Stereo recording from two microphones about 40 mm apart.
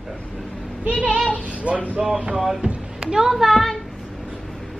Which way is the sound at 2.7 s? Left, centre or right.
Centre.